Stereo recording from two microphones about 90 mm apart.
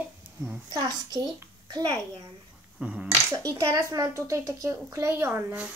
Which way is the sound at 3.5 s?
35° right (ahead or behind).